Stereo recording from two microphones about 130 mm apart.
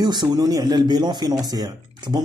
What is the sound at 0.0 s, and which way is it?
Speech, 35° right (ahead or behind).